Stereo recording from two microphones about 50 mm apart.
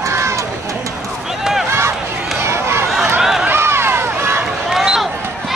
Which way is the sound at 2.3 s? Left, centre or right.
Right.